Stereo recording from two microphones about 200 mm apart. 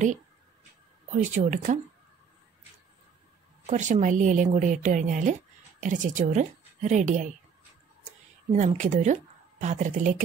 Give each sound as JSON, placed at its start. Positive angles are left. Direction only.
{"t": 1.3, "sound": "a woman's voice", "side_deg": -40}
{"t": 3.6, "sound": "a woman's voice", "side_deg": -35}
{"t": 8.5, "sound": "speech", "side_deg": -40}